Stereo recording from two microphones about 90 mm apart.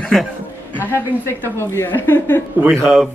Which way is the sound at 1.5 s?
25° left (ahead or behind).